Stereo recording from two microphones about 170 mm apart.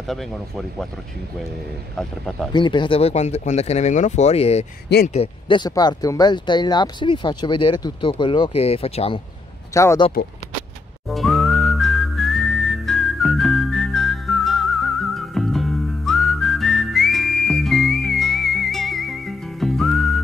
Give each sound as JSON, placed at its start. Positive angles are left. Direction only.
{"t": 0.0, "sound": "speech", "side_deg": 0}
{"t": 2.5, "sound": "speech", "side_deg": 30}
{"t": 9.8, "sound": "speech", "side_deg": 20}
{"t": 11.1, "sound": "whistling", "side_deg": 0}